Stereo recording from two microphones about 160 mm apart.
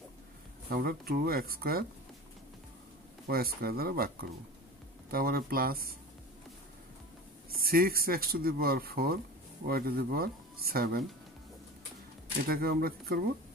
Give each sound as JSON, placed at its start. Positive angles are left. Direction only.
{"t": 0.7, "sound": "speech", "side_deg": -70}
{"t": 3.3, "sound": "speech", "side_deg": -70}
{"t": 5.1, "sound": "speech", "side_deg": -65}
{"t": 7.5, "sound": "speech", "side_deg": -65}
{"t": 12.4, "sound": "speech", "side_deg": -70}